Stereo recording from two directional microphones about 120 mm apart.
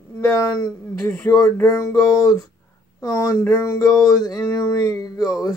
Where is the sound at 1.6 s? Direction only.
25° left (ahead or behind).